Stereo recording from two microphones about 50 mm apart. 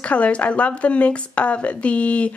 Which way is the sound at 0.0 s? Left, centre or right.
Left.